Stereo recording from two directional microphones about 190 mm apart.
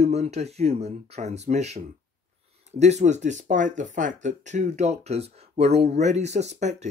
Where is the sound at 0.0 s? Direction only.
35° right (ahead or behind).